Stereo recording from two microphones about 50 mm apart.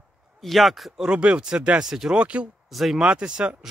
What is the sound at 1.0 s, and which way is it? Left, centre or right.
Speech, right.